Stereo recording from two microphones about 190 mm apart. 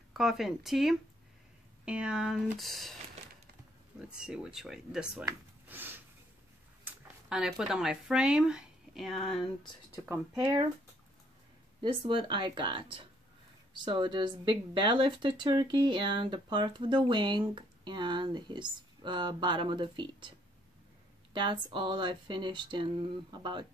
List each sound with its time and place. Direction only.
0.1 s speech: centre (ahead or behind)
4.1 s speech: 5° right (ahead or behind)
5.2 s a sound: 10° right (ahead or behind)
6.8 s speech: 5° right (ahead or behind)
10.0 s speech: 10° right (ahead or behind)
11.8 s speech: 25° right (ahead or behind)